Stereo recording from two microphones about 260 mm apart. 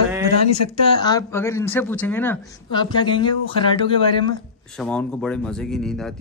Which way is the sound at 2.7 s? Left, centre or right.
Centre.